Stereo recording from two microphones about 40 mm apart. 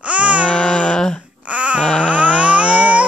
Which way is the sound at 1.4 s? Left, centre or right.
Right.